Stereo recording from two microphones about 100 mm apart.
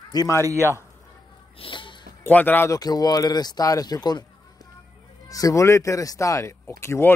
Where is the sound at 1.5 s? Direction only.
60° left (ahead or behind).